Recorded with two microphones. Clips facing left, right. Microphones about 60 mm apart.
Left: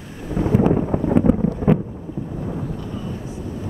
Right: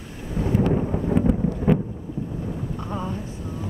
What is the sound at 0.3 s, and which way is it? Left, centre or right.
Thunder, left.